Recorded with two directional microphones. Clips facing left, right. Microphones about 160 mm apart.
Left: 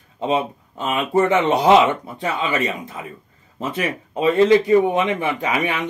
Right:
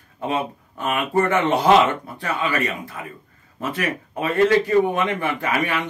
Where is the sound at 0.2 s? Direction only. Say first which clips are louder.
Left 4 dB; 20° left (ahead or behind).